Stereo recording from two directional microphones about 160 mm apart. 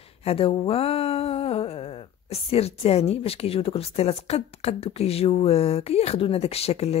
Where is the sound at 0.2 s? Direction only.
40° left (ahead or behind).